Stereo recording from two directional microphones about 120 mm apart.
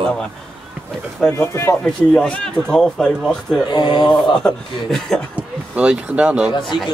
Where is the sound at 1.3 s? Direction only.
20° left (ahead or behind).